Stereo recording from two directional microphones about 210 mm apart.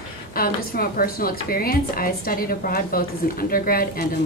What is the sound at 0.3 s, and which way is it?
A woman's voice, 45° left (ahead or behind).